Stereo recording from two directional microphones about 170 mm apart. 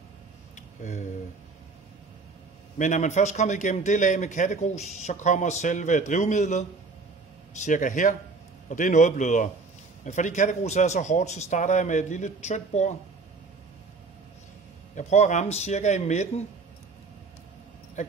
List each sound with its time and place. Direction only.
2.8 s a man's voice: 45° left (ahead or behind)
15.0 s a man's voice: 45° left (ahead or behind)
18.0 s speech: 45° left (ahead or behind)